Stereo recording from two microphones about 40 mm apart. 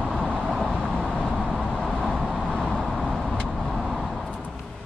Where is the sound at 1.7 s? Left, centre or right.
Centre.